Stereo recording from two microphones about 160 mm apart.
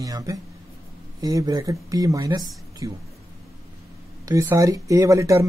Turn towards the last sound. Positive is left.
turn(degrees=-20)  # may be behind; listen again after turning